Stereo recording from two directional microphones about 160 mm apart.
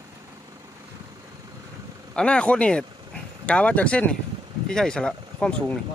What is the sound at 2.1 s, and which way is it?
Speech, 5° left (ahead or behind).